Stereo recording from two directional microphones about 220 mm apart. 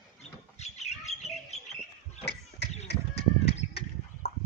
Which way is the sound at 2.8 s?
50° left (ahead or behind).